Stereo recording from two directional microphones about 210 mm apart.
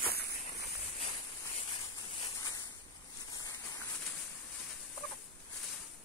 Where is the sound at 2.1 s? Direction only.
20° left (ahead or behind).